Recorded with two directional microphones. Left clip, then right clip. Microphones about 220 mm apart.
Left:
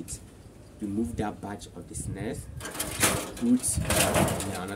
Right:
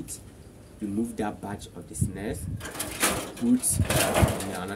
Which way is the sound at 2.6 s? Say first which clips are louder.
Even; 20° left (ahead or behind).